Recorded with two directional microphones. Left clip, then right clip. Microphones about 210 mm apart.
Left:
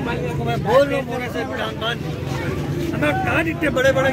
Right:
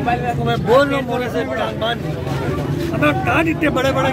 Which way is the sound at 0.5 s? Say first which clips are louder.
Right 2 dB; 45° right (ahead or behind).